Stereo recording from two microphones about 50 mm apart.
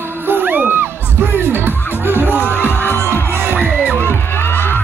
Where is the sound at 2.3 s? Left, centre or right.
Left.